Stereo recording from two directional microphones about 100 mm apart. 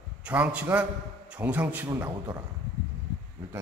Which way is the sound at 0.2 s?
15° right (ahead or behind).